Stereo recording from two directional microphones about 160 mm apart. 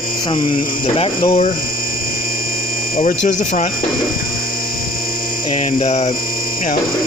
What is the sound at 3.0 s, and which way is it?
Speech, 50° left (ahead or behind).